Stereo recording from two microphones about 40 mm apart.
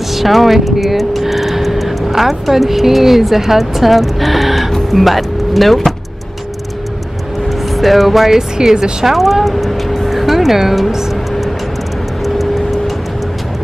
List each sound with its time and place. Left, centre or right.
0.1 s speech: centre
7.7 s speech: centre
8.4 s speech: centre
9.1 s speech: centre
12.4 s music: centre